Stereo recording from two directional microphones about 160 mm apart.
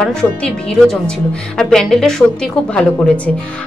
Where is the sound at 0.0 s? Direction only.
5° left (ahead or behind).